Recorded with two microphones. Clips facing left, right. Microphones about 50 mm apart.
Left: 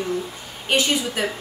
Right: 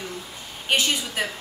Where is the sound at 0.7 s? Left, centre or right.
Centre.